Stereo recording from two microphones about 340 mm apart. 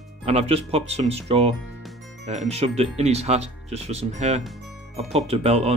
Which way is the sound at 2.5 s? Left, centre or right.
Centre.